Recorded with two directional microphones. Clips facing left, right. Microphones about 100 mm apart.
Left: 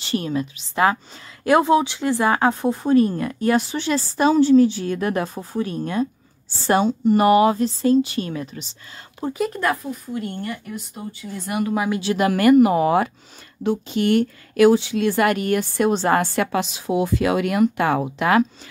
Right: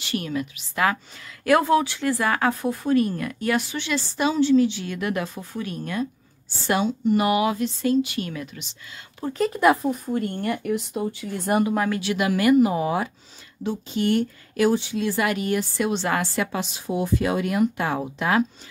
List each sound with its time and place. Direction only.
0.0 s a woman's voice: 30° left (ahead or behind)
9.5 s speech: 10° right (ahead or behind)
10.0 s speech: 55° right (ahead or behind); by 11.4 s 80° right
12.0 s speech: 35° left (ahead or behind)
12.3 s a woman's voice: 50° left (ahead or behind)
16.3 s speech: 90° left